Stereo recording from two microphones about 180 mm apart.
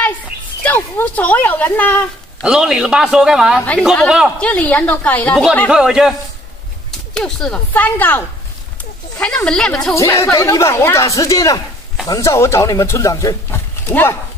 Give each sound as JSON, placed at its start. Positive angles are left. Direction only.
{"t": 0.7, "sound": "speech", "side_deg": 10}
{"t": 2.4, "sound": "speech", "side_deg": -5}
{"t": 7.2, "sound": "speech", "side_deg": 5}
{"t": 9.9, "sound": "speech", "side_deg": 15}